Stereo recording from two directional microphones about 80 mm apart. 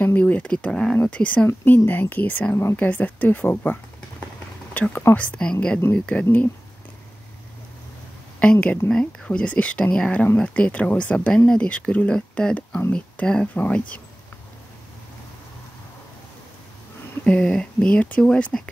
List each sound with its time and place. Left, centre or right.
0.0 s speech: centre
1.5 s speech: left
8.4 s speech: centre
17.2 s speech: centre